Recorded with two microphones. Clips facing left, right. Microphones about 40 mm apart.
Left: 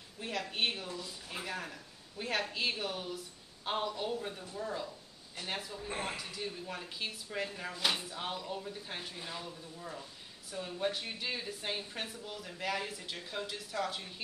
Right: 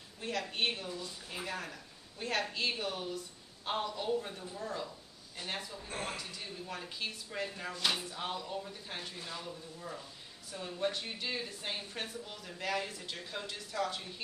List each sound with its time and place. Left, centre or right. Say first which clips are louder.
0.2 s speech: even; centre
5.9 s speech: left 2 dB; centre
6.1 s speech: left 2 dB; centre